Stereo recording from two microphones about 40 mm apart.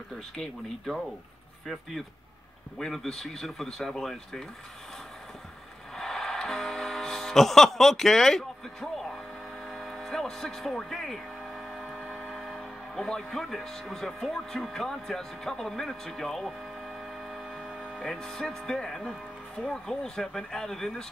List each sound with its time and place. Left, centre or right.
2.8 s speech: centre
5.9 s music: centre
9.7 s a sound: centre
12.4 s speech: centre
17.8 s music: left
18.1 s speech: centre